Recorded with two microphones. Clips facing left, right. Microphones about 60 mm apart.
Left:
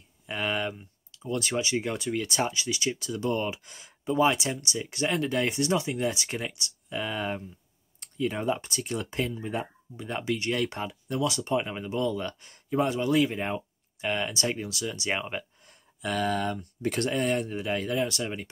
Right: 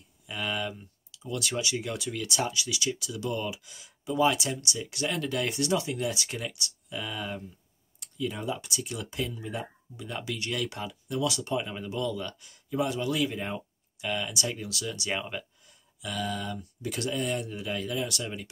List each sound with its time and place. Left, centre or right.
0.3 s speech: left
15.6 s speech: left